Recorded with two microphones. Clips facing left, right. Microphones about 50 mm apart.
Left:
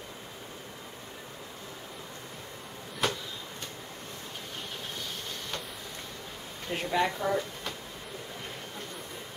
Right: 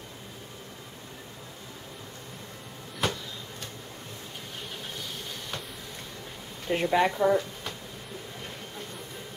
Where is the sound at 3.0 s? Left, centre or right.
Centre.